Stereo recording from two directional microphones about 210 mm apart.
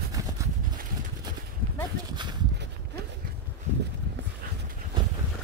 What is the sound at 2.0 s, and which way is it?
Speech, 20° right (ahead or behind).